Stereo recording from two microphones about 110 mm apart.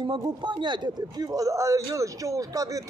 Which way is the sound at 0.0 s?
45° right (ahead or behind).